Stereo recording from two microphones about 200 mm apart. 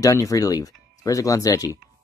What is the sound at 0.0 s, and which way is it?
Speech, 15° left (ahead or behind).